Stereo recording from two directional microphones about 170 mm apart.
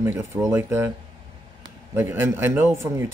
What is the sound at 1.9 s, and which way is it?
Speech, 15° right (ahead or behind).